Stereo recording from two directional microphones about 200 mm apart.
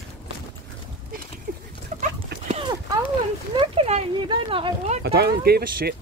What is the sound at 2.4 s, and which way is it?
Clip-clop, 30° right (ahead or behind).